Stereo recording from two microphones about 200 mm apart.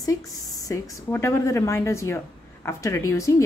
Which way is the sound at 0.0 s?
15° left (ahead or behind).